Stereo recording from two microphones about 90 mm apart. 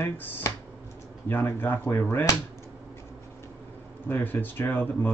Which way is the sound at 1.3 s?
20° left (ahead or behind).